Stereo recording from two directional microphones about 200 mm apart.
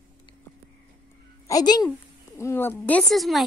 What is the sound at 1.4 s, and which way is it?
Speech, 20° left (ahead or behind).